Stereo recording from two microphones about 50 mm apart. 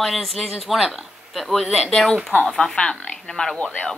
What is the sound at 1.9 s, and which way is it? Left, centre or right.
Speech, centre.